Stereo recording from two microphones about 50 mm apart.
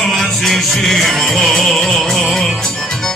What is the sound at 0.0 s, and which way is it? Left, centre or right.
Music, centre.